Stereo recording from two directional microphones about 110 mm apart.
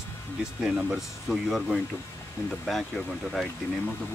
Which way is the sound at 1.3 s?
Centre (ahead or behind).